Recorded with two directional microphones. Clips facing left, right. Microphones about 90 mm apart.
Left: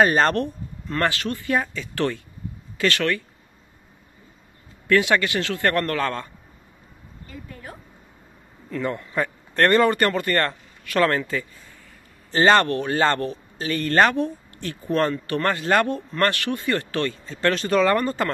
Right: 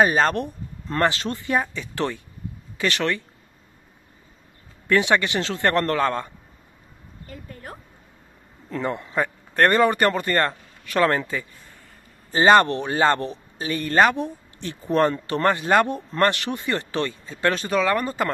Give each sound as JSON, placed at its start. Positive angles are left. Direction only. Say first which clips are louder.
{"t": 0.0, "sound": "speech", "louder": "left 1 dB", "side_deg": -5}
{"t": 0.9, "sound": "speech", "louder": "right 2 dB", "side_deg": -25}
{"t": 4.8, "sound": "speech", "louder": "even", "side_deg": -20}
{"t": 7.2, "sound": "a sound", "louder": "even", "side_deg": -45}
{"t": 8.6, "sound": "a man's voice", "louder": "even", "side_deg": -25}
{"t": 17.7, "sound": "speech", "louder": "left 4 dB", "side_deg": 0}
{"t": 18.0, "sound": "speech", "louder": "left 1 dB", "side_deg": -10}